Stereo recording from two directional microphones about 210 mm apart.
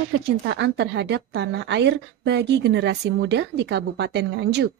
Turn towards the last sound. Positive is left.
turn(degrees=-55)  # may be behind; listen again after turning